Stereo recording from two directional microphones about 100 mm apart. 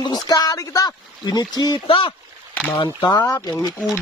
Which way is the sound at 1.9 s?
60° left (ahead or behind).